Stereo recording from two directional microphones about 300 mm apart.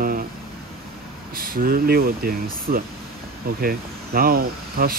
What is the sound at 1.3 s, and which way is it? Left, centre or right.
Speech, right.